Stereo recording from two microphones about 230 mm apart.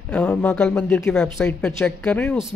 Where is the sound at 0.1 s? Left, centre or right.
Centre.